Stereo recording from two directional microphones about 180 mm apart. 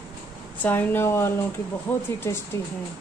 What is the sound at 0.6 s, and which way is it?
Speech, 10° left (ahead or behind).